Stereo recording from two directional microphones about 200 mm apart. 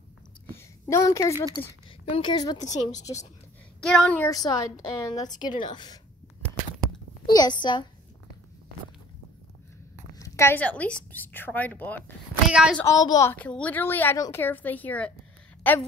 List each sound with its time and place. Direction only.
0.8 s a woman's voice: 15° left (ahead or behind)
1.3 s a woman's voice: 15° right (ahead or behind)
1.9 s a woman's voice: 25° left (ahead or behind)
3.8 s a woman's voice: 5° left (ahead or behind); by 5.9 s 20° left (ahead or behind)
7.2 s a woman's voice: 20° left (ahead or behind)
10.1 s a woman's voice: 15° left (ahead or behind)
12.4 s a woman's voice: 5° right (ahead or behind)
12.8 s a woman's voice: 20° left (ahead or behind)